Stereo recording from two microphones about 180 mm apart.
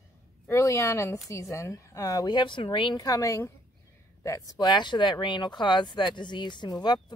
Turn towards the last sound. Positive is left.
turn(degrees=25)  # may be behind; listen again after turning